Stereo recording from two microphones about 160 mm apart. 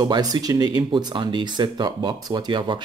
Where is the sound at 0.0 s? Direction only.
25° right (ahead or behind).